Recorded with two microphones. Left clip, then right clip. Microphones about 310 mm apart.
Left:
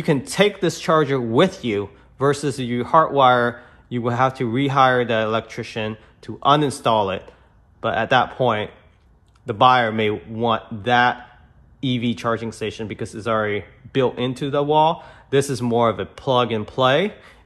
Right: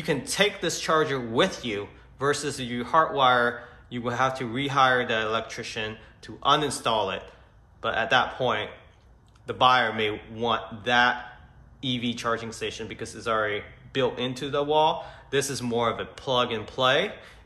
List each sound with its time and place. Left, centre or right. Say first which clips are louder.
0.0 s speech: left 6 dB; centre